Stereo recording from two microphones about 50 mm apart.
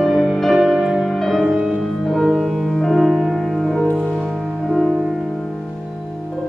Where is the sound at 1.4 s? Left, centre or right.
Right.